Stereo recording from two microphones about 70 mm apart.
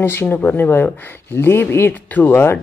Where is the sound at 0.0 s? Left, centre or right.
Left.